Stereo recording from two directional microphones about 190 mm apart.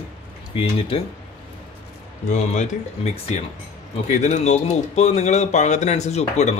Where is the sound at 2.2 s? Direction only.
40° left (ahead or behind).